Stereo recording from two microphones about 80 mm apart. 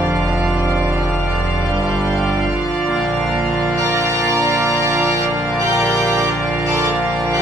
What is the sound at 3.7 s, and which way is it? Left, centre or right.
Organ, right.